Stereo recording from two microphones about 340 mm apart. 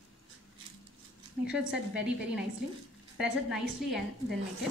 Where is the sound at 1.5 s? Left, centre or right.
Centre.